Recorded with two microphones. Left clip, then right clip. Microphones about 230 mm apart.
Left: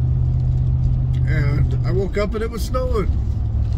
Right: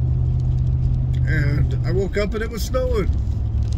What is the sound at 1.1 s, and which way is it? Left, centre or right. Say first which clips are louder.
Speech: right 1 dB; centre.